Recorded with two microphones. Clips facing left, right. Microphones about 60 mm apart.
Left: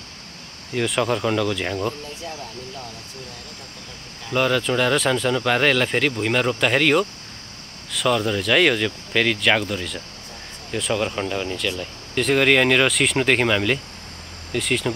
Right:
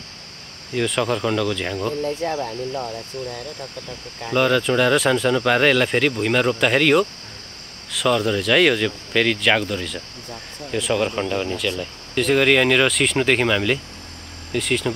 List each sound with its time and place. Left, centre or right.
0.7 s speech: centre
2.0 s speech: right
4.3 s speech: centre